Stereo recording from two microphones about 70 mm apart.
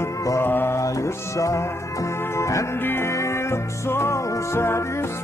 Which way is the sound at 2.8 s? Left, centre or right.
Left.